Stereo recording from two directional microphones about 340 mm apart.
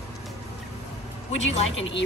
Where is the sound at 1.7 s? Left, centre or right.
Left.